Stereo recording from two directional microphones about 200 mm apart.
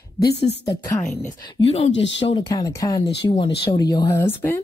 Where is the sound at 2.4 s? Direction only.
15° left (ahead or behind).